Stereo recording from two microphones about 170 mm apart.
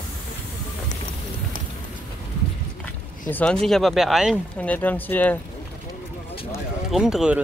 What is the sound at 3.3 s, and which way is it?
Speech, 10° left (ahead or behind).